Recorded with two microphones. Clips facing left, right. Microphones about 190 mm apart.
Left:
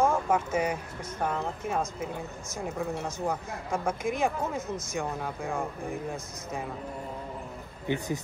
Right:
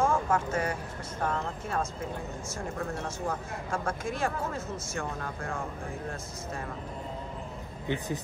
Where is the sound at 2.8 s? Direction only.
10° left (ahead or behind).